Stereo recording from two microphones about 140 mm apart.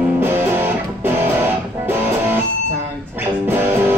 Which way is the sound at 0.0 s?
15° right (ahead or behind).